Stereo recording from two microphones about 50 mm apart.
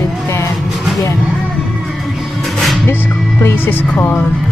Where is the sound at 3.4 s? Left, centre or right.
Left.